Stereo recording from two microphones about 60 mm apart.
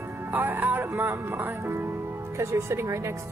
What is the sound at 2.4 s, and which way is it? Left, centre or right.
Speech, right.